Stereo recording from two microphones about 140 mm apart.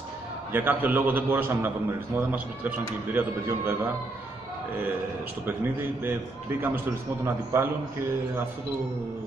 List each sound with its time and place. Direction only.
0.5 s a man's voice: 15° right (ahead or behind)
5.4 s a man's voice: 15° right (ahead or behind)
7.2 s a man's voice: 15° right (ahead or behind)